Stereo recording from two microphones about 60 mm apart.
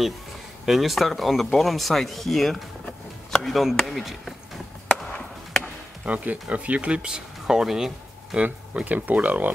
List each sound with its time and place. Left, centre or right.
0.7 s speech: centre
6.0 s speech: right; by 8.4 s centre
8.7 s speech: right